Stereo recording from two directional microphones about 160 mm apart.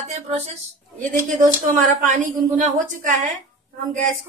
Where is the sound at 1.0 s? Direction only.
55° right (ahead or behind).